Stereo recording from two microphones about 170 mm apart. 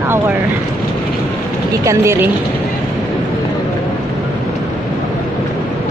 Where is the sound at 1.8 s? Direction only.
15° right (ahead or behind).